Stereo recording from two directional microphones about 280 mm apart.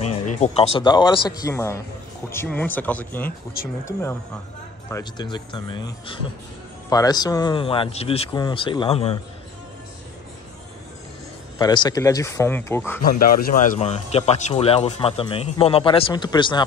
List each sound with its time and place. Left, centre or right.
0.0 s music: left
0.4 s speech: left
11.5 s speech: centre
13.2 s speech: left